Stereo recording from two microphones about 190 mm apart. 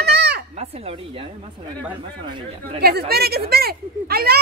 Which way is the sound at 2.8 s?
55° right (ahead or behind).